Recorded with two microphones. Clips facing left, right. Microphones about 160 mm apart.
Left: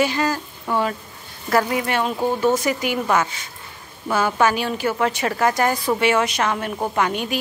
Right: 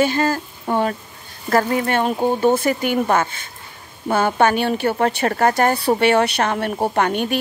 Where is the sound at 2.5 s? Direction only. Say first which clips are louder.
Right 3 dB; 55° right (ahead or behind).